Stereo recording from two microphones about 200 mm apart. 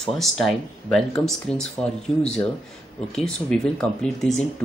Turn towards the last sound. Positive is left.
turn(degrees=0)  # may be behind; listen again after turning